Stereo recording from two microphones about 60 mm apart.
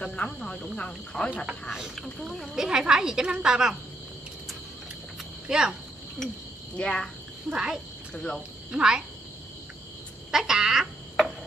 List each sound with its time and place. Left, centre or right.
0.0 s speech: centre
1.3 s a woman's voice: centre
5.5 s a woman's voice: centre
6.8 s speech: centre
7.4 s a woman's voice: centre
8.1 s cricket: centre
8.7 s a woman's voice: centre
10.3 s frog: centre